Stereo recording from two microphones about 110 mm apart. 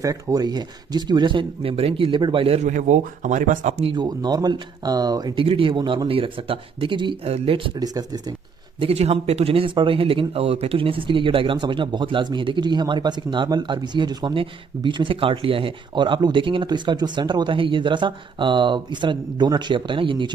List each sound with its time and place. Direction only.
0.0 s speech: 35° right (ahead or behind); by 3.0 s 80° right
3.8 s speech: 45° right (ahead or behind)
5.3 s speech: 50° right (ahead or behind)
7.2 s speech: 65° right (ahead or behind)
7.8 s speech: 35° right (ahead or behind)
8.7 s speech: 65° right (ahead or behind); by 20.2 s 50° right (ahead or behind)